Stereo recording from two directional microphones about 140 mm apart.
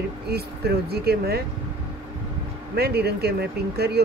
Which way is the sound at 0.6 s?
90° right.